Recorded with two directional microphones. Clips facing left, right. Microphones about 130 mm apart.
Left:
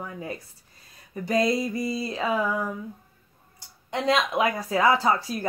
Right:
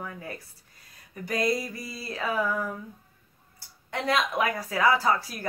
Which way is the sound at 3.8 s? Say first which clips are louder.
Left 3 dB; 20° left (ahead or behind).